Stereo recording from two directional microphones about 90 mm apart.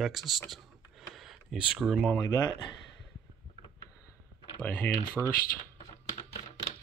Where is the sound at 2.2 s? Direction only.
45° left (ahead or behind).